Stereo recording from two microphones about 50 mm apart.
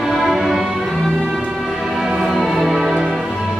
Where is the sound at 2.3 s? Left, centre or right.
Centre.